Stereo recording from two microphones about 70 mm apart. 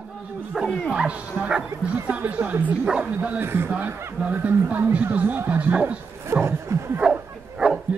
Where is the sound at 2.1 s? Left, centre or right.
Right.